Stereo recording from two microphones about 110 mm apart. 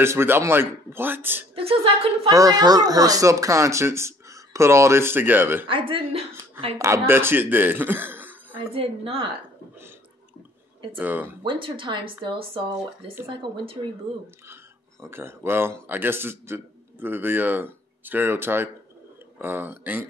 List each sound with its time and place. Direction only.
0.0 s speech: 20° right (ahead or behind)
1.5 s a woman's voice: 60° right (ahead or behind)
2.3 s speech: 35° right (ahead or behind); by 5.7 s 20° right (ahead or behind)
5.7 s speech: 50° right (ahead or behind)
6.8 s speech: 25° right (ahead or behind)
8.5 s a woman's voice: 55° right (ahead or behind)
11.0 s speech: 15° right (ahead or behind)
11.4 s speech: 50° right (ahead or behind)
14.5 s speech: 20° right (ahead or behind)